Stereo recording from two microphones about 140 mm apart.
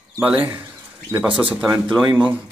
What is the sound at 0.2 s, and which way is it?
Speech, 10° right (ahead or behind).